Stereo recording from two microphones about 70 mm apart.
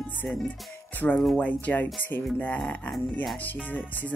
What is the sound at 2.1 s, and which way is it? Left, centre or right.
Speech, left.